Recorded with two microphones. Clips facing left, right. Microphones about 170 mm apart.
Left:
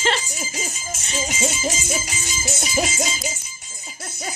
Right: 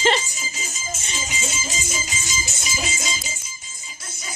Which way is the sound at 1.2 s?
65° left (ahead or behind).